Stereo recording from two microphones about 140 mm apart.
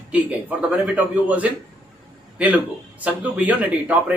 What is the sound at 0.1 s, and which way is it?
A man's voice, 10° right (ahead or behind).